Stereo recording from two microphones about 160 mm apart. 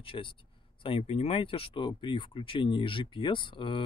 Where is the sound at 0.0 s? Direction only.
35° left (ahead or behind).